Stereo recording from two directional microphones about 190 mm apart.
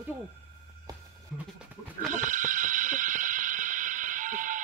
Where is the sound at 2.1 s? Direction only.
45° right (ahead or behind).